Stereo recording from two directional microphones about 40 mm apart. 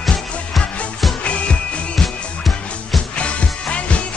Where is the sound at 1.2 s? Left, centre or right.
Left.